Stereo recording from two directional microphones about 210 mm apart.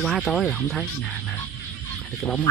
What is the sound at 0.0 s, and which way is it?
Speech, centre (ahead or behind).